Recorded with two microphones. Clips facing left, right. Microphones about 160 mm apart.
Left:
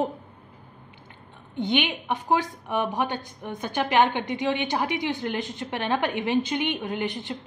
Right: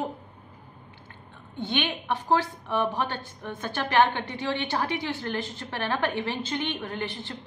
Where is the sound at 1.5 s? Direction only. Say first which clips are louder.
Left 4 dB; 15° left (ahead or behind).